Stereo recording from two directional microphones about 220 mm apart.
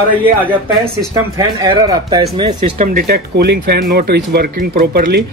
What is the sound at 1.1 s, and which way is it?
Speech, 15° right (ahead or behind).